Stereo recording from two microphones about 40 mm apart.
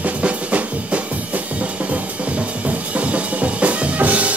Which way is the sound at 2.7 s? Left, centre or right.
Right.